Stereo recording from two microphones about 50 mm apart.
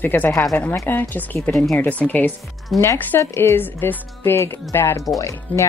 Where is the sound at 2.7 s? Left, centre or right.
Centre.